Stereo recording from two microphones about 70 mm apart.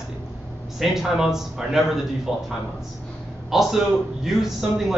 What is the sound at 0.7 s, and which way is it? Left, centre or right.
A man's voice, centre.